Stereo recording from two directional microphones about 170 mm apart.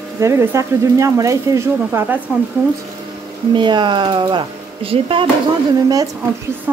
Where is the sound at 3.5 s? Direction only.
25° right (ahead or behind).